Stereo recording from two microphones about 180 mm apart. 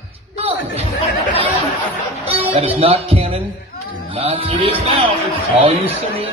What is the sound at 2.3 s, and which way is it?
Speech, 35° right (ahead or behind).